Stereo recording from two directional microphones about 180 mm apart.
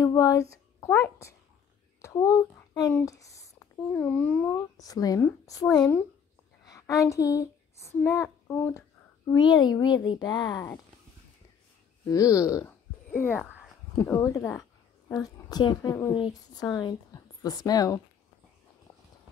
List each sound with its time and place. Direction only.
0.0 s speech: 20° left (ahead or behind)
2.0 s a sound: 15° left (ahead or behind)
2.9 s a child's voice: 15° left (ahead or behind)
4.6 s speech: 20° left (ahead or behind)
6.6 s a sound: 20° left (ahead or behind)
8.0 s speech: 15° left (ahead or behind)
12.1 s a woman's voice: 20° left (ahead or behind)